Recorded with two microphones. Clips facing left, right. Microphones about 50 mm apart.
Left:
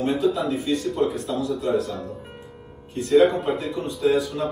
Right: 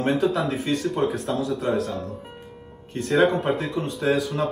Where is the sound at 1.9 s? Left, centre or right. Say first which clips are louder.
Right 1 dB; centre.